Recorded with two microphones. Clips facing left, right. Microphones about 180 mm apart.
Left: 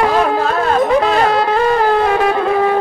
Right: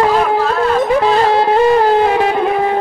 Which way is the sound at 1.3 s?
25° right (ahead or behind).